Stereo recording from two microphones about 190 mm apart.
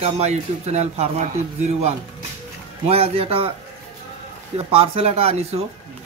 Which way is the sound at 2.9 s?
30° right (ahead or behind).